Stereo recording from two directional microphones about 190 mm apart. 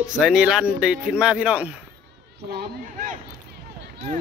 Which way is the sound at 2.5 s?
50° right (ahead or behind).